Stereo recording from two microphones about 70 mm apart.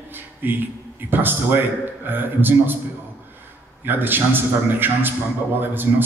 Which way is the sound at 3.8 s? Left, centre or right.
Right.